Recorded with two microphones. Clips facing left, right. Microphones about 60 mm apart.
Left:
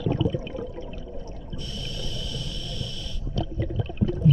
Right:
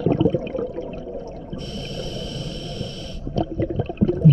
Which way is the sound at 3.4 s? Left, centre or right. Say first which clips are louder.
Right 7 dB; right.